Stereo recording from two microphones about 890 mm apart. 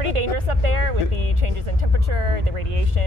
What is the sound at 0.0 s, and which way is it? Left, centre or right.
Music, right.